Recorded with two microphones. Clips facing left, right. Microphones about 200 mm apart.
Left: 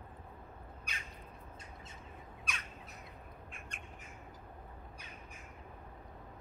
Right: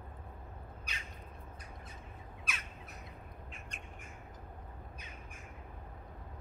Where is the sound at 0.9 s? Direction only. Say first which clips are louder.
Left 1 dB; 50° left (ahead or behind).